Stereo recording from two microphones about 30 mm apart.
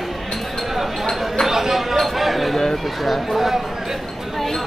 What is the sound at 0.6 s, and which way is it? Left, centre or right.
Chink, centre.